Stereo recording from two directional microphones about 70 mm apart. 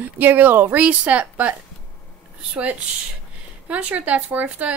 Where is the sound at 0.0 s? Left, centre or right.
Right.